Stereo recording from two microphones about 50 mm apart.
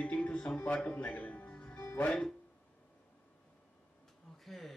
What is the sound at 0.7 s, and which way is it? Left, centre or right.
Speech, left.